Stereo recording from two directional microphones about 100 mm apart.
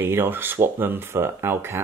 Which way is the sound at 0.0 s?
20° right (ahead or behind).